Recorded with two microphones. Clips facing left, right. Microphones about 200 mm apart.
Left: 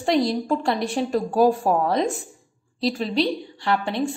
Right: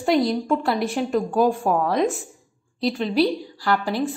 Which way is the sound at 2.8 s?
Centre (ahead or behind).